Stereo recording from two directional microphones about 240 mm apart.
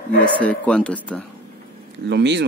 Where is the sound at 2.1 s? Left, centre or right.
Right.